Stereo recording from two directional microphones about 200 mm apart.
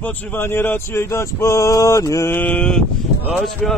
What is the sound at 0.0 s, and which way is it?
A man's voice, 10° left (ahead or behind).